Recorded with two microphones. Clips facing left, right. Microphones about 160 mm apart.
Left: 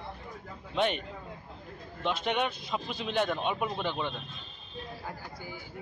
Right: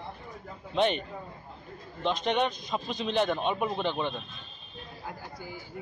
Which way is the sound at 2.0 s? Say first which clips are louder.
Right 3 dB; 5° left (ahead or behind).